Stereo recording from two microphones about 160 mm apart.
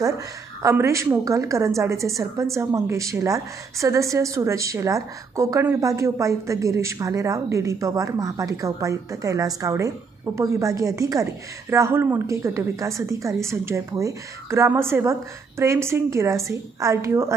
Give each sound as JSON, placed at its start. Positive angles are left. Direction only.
{"t": 0.6, "sound": "a woman's voice", "side_deg": -15}